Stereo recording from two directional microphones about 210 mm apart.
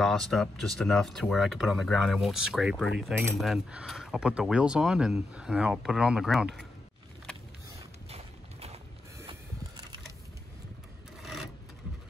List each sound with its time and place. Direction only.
0.0 s speech: centre (ahead or behind)
8.1 s clip-clop: 30° right (ahead or behind)